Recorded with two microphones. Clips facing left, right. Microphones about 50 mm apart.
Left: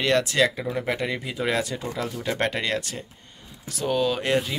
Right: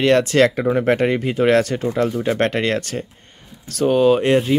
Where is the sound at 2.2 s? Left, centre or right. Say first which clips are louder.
Right 7 dB; right.